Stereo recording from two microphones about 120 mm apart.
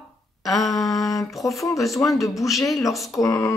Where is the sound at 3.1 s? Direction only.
25° left (ahead or behind).